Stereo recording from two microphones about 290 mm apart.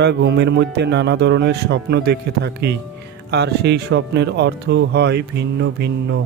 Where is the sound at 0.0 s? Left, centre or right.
Right.